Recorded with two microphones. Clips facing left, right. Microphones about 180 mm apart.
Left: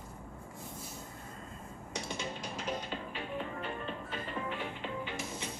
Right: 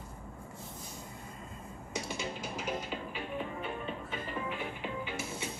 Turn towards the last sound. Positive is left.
turn(degrees=-5)  # may be behind; listen again after turning